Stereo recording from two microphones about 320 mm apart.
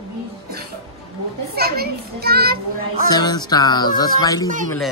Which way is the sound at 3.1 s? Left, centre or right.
Centre.